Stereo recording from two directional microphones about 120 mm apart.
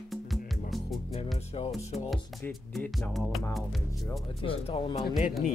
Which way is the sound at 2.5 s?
Centre (ahead or behind).